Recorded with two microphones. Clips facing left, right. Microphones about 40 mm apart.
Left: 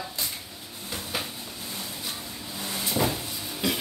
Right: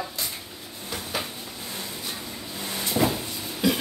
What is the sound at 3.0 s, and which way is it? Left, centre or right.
Cupboard open or close, centre.